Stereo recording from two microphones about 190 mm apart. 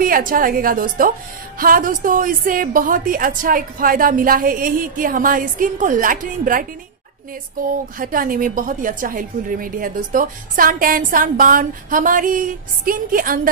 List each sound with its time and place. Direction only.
0.0 s a woman's voice: 50° right (ahead or behind)
8.0 s a woman's voice: 45° right (ahead or behind)